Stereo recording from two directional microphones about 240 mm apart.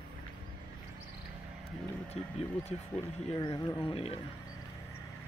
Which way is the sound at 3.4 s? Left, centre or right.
Centre.